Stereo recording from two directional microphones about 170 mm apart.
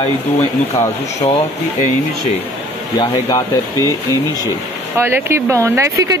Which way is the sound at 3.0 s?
20° left (ahead or behind).